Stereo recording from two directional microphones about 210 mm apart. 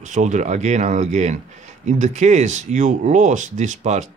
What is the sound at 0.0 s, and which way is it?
Speech, 35° right (ahead or behind).